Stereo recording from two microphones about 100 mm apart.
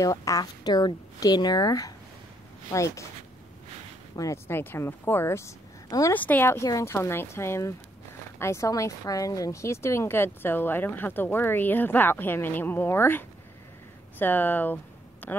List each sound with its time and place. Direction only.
0.0 s a woman's voice: 35° left (ahead or behind)
4.1 s speech: 35° left (ahead or behind)
4.5 s speech: 20° left (ahead or behind)
6.1 s speech: 15° left (ahead or behind)
6.5 s speech: 30° left (ahead or behind)